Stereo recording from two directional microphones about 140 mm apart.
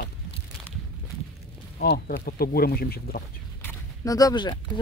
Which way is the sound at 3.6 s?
25° left (ahead or behind).